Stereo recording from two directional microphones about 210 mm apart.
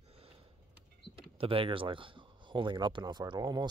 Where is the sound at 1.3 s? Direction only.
25° right (ahead or behind).